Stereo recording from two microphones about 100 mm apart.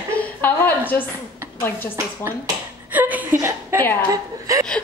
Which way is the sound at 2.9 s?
15° right (ahead or behind).